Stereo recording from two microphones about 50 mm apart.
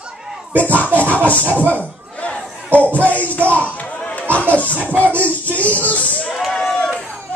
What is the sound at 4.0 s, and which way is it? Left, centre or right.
Chatter, left.